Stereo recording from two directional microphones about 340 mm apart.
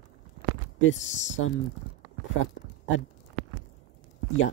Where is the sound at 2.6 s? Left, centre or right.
Left.